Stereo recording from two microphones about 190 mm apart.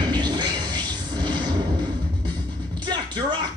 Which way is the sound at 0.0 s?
20° right (ahead or behind).